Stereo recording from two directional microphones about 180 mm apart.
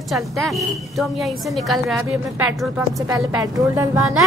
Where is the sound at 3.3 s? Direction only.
20° right (ahead or behind).